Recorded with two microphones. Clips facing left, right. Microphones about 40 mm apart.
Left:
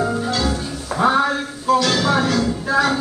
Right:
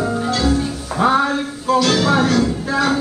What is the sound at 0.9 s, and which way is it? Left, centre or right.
Music, centre.